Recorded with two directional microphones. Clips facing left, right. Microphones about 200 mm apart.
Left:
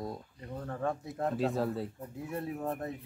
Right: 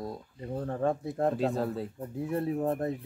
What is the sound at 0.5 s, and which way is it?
Speech, 30° right (ahead or behind).